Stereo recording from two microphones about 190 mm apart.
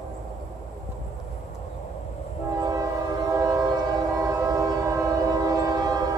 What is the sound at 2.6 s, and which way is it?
Train, 20° right (ahead or behind).